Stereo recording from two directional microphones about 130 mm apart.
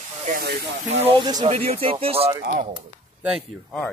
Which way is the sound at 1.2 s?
35° right (ahead or behind).